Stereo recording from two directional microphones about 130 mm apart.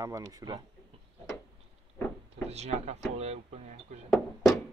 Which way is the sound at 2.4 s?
55° right (ahead or behind).